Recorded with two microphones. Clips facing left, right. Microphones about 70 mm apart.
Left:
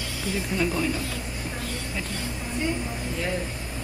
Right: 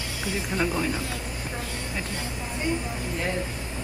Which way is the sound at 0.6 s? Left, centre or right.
Right.